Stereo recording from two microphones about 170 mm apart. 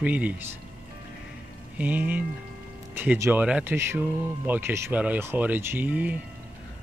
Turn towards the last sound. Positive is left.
turn(degrees=-10)  # may be behind; listen again after turning